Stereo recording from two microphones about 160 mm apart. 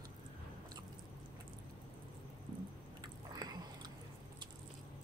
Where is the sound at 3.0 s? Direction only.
25° right (ahead or behind).